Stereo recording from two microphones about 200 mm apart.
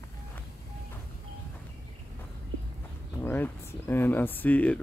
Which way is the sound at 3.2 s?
10° left (ahead or behind).